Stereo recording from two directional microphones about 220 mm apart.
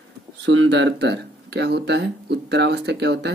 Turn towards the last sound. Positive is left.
turn(degrees=-50)  # may be behind; listen again after turning